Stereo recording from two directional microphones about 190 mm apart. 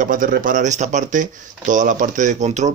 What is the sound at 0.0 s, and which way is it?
Speech, 45° right (ahead or behind).